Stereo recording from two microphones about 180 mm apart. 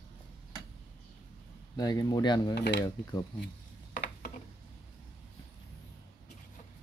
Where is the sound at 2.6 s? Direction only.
70° left (ahead or behind).